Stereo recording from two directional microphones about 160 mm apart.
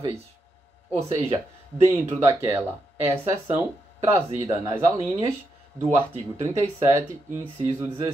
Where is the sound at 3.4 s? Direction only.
40° right (ahead or behind).